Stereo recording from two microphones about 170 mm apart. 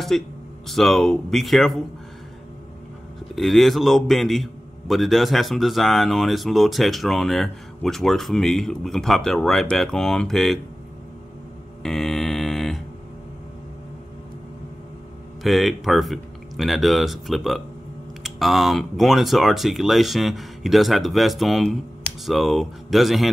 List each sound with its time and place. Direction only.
0.1 s a man's voice: 5° left (ahead or behind)
3.3 s a man's voice: centre (ahead or behind)
11.8 s mantra: centre (ahead or behind)
15.4 s a man's voice: centre (ahead or behind)